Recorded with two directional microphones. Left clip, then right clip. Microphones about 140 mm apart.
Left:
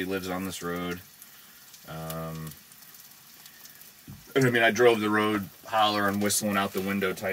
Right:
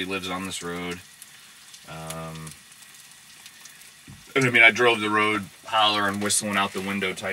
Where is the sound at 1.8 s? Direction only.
35° left (ahead or behind).